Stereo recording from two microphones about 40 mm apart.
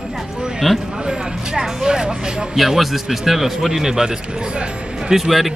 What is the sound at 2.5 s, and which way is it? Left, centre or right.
Speech, centre.